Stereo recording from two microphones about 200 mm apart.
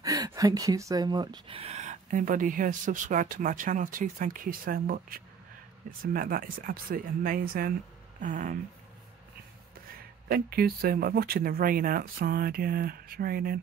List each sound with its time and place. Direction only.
0.0 s speech: 15° right (ahead or behind); by 8.5 s 40° right (ahead or behind)
10.2 s speech: 50° right (ahead or behind)